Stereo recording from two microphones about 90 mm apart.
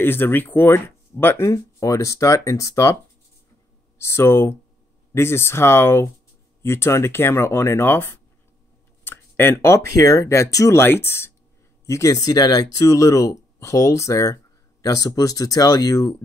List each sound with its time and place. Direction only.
0.0 s speech: 25° left (ahead or behind)
1.5 s speech: 40° left (ahead or behind)
4.0 s speech: 30° left (ahead or behind)
10.8 s speech: 25° left (ahead or behind); by 16.2 s 40° left (ahead or behind)